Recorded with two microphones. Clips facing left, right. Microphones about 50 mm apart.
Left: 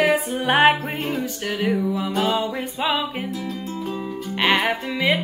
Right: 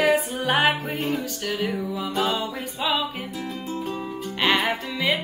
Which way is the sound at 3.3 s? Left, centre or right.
Centre.